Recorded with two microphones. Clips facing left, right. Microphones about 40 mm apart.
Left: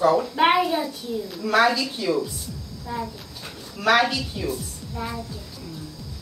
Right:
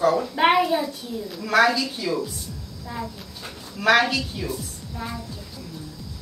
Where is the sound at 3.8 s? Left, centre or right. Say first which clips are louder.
Right 1 dB; centre.